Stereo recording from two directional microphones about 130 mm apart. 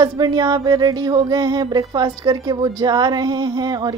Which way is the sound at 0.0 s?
30° right (ahead or behind).